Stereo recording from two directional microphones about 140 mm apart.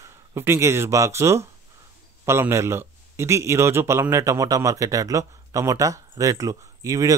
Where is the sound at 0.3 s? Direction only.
20° right (ahead or behind).